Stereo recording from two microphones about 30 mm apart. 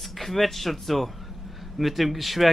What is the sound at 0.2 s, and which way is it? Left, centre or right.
Speech, centre.